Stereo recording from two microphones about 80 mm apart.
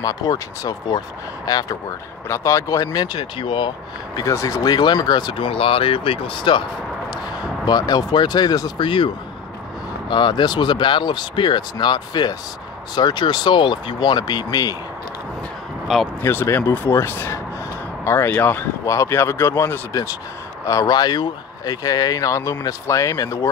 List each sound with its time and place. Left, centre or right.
0.0 s speech: left
2.2 s speech: left
2.9 s speech: left
4.2 s speech: left
7.1 s speech: left
8.7 s speech: left
10.0 s speech: left
16.2 s speech: left
18.9 s speech: left
20.9 s speech: left